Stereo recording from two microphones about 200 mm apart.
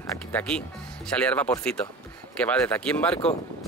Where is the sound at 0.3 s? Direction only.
5° left (ahead or behind).